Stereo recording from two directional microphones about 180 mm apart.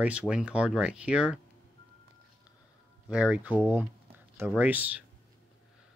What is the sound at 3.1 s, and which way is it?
Speech, 5° right (ahead or behind).